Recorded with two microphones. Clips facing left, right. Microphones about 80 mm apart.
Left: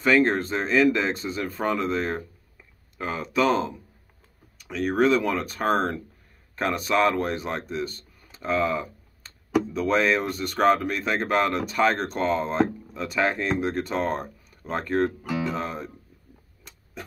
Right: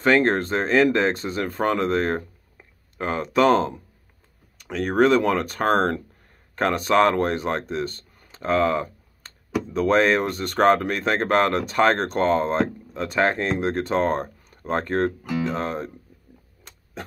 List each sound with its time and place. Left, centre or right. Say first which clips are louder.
0.0 s speech: right 2 dB; right
2.5 s a sound: right 3 dB; right
4.6 s speech: right 3 dB; right